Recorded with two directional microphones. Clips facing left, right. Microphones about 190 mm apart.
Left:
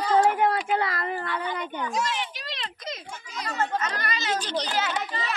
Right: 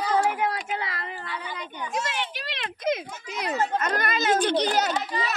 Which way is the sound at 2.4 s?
55° right (ahead or behind).